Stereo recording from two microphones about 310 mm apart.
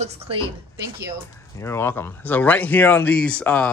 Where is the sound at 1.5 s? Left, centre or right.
Centre.